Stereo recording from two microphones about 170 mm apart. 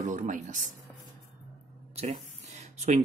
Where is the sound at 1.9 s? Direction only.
40° right (ahead or behind).